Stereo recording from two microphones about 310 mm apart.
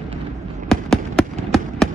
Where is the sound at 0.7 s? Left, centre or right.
Centre.